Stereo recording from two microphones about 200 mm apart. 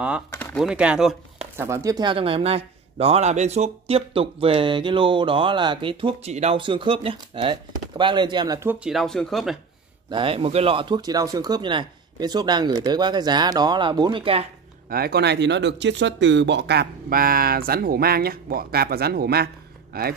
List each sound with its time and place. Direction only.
0.6 s speech: 5° right (ahead or behind)
1.6 s speech: 15° right (ahead or behind)
10.0 s speech: 25° right (ahead or behind)
14.9 s speech: 50° right (ahead or behind)